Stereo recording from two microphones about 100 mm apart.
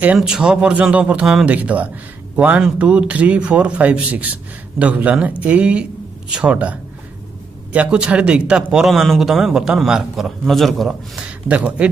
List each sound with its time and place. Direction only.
0.0 s a man's voice: 10° right (ahead or behind)
11.4 s a man's voice: 15° right (ahead or behind)